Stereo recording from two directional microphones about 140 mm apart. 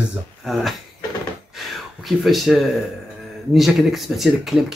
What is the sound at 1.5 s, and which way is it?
Gasp, centre (ahead or behind).